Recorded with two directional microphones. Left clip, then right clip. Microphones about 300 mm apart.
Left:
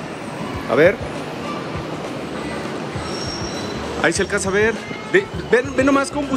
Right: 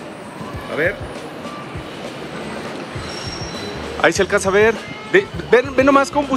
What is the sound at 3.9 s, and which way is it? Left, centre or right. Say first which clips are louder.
Speech: right 4 dB; centre.